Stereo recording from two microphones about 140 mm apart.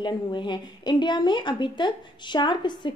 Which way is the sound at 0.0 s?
35° left (ahead or behind).